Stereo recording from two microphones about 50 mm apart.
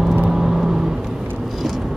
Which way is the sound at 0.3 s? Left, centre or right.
Centre.